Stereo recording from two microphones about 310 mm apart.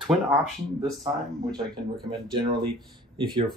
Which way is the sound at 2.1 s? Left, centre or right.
Centre.